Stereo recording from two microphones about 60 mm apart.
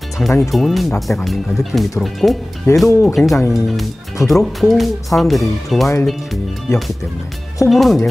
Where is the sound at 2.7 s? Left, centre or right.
Left.